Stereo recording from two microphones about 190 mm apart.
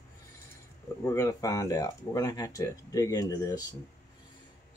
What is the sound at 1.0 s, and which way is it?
Speech, 15° left (ahead or behind).